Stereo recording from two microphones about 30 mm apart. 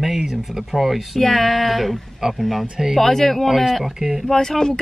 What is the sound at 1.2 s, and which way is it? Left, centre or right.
Speech, centre.